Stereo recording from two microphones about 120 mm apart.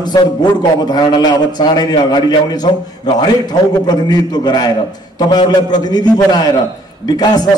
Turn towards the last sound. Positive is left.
turn(degrees=35)  # may be behind; listen again after turning